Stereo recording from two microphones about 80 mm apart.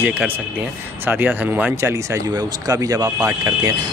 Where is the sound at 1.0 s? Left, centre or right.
Right.